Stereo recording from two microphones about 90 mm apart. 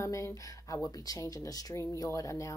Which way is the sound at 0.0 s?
35° left (ahead or behind).